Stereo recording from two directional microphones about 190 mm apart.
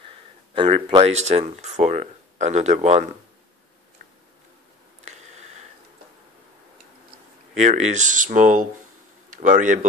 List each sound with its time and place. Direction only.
0.6 s speech: 30° right (ahead or behind)
5.0 s a sound: 35° right (ahead or behind)
7.5 s a man's voice: 35° right (ahead or behind)